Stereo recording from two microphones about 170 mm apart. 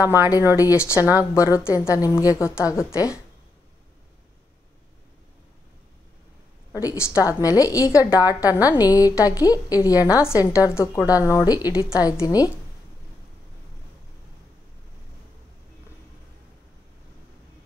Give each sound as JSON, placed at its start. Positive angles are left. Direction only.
{"t": 0.2, "sound": "a woman's voice", "side_deg": 20}
{"t": 6.7, "sound": "a woman's voice", "side_deg": 20}